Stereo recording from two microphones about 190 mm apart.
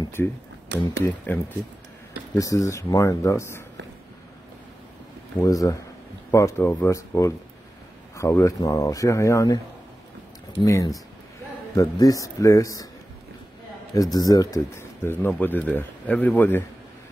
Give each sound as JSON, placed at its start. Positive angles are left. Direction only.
{"t": 0.0, "sound": "music", "side_deg": 10}
{"t": 0.7, "sound": "speech", "side_deg": -65}
{"t": 1.0, "sound": "speech", "side_deg": 10}
{"t": 5.4, "sound": "speech", "side_deg": 20}
{"t": 10.6, "sound": "speech", "side_deg": 15}
{"t": 14.1, "sound": "speech", "side_deg": 20}